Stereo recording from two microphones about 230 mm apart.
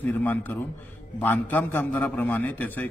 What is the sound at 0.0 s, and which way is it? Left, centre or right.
A man's voice, centre.